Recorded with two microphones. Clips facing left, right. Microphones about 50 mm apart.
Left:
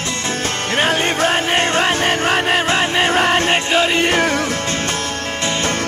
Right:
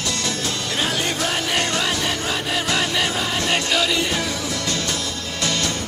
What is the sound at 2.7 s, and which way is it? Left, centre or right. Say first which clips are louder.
Music: left 6 dB; left.